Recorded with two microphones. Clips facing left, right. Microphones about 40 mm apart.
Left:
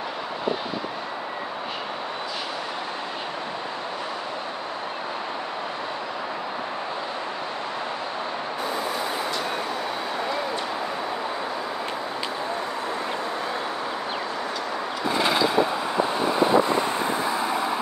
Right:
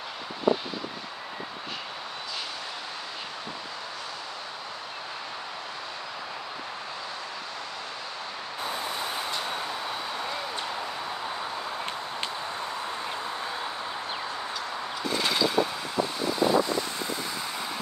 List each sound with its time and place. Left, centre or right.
15.0 s vehicle: centre
16.1 s vehicle: left